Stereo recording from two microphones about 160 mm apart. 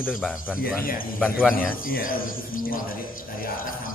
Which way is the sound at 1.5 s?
60° left (ahead or behind).